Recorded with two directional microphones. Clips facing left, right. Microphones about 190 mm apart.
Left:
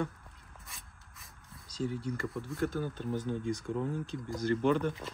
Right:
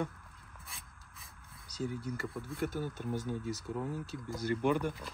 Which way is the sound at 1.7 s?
10° right (ahead or behind).